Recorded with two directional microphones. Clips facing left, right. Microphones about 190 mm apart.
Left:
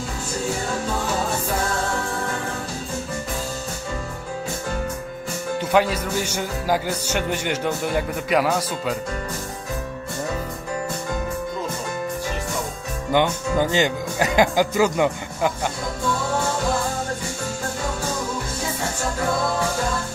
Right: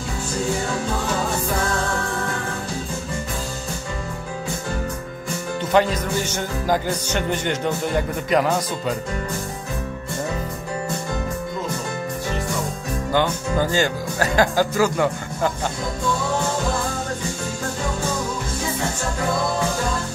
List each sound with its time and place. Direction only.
5.6 s speech: 10° left (ahead or behind)
13.1 s speech: 20° left (ahead or behind)